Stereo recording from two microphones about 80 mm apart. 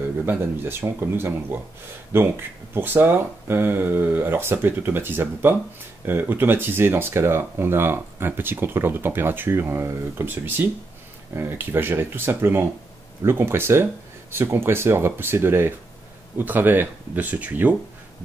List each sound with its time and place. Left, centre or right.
0.2 s speech: right